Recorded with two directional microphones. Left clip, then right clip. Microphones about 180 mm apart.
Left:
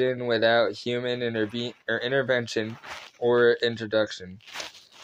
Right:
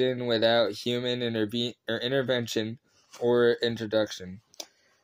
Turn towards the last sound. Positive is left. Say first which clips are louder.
# left 4 dB
turn(degrees=-35)  # may be behind; listen again after turning